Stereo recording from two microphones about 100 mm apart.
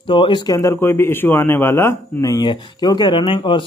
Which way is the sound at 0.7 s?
20° left (ahead or behind).